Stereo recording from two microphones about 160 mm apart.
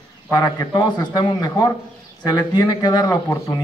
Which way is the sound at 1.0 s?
25° left (ahead or behind).